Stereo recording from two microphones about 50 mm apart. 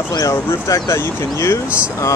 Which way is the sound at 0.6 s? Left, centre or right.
Left.